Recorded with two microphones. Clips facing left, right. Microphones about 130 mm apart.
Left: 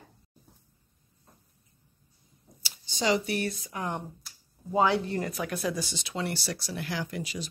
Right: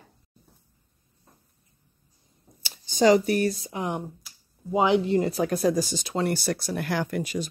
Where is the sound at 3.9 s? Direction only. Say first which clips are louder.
Right 4 dB; 10° right (ahead or behind).